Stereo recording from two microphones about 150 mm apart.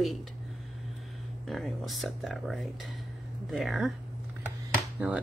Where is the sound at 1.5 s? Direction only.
Centre (ahead or behind).